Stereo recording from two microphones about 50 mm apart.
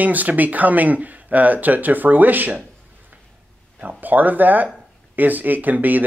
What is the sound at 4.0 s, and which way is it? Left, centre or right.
Speech, right.